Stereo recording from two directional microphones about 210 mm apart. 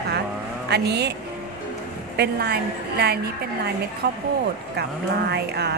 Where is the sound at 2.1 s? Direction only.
50° right (ahead or behind).